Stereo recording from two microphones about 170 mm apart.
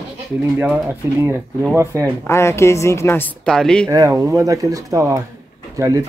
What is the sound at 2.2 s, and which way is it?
A woman's voice, 15° left (ahead or behind).